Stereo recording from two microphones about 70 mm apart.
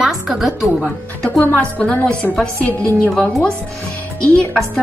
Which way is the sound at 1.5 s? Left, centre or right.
Left.